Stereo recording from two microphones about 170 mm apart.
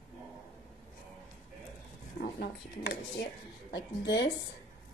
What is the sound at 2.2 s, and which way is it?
Speech, 70° left (ahead or behind).